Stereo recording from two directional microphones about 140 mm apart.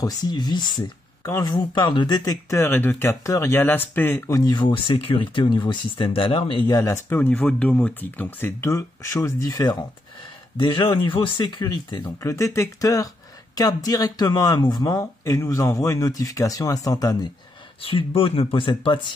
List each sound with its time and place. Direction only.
0.0 s speech: 25° left (ahead or behind)
4.4 s speech: 30° left (ahead or behind)
6.8 s speech: 20° left (ahead or behind)
12.2 s speech: 20° left (ahead or behind)
17.8 s speech: 40° left (ahead or behind)